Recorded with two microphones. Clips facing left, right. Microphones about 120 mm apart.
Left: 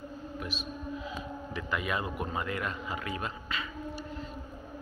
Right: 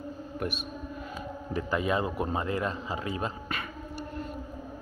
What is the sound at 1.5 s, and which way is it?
Speech, 35° right (ahead or behind).